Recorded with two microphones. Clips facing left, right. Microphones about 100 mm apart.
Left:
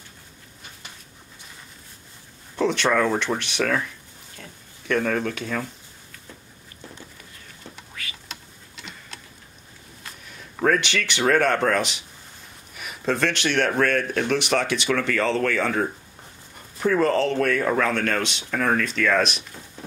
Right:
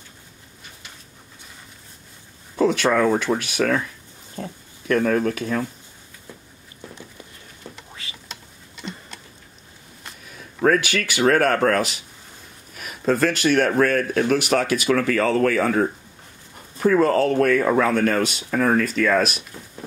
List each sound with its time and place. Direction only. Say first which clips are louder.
2.5 s speech: right 3 dB; 5° right (ahead or behind)
4.4 s oink: right 12 dB; 35° right (ahead or behind)
4.8 s speech: right 4 dB; 5° right (ahead or behind)
7.9 s a sound: left 1 dB; 25° right (ahead or behind)
10.3 s speech: right 3 dB; centre (ahead or behind)
16.9 s speech: right 3 dB; 5° right (ahead or behind)